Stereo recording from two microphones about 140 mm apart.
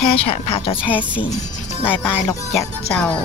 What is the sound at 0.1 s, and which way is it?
Speech, 45° left (ahead or behind).